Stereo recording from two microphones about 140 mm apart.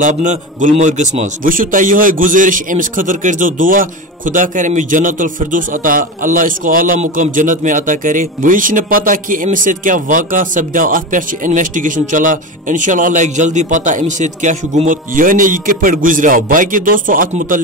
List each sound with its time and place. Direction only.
0.0 s a man's voice: 60° right (ahead or behind); by 17.6 s 80° right